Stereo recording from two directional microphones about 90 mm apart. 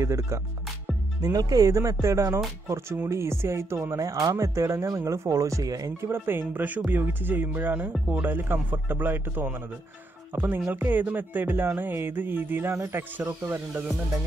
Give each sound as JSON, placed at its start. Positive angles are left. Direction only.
{"t": 0.0, "sound": "speech", "side_deg": -35}
{"t": 1.2, "sound": "speech", "side_deg": -45}
{"t": 6.0, "sound": "music", "side_deg": -25}
{"t": 10.6, "sound": "music", "side_deg": -20}
{"t": 12.7, "sound": "speech", "side_deg": -35}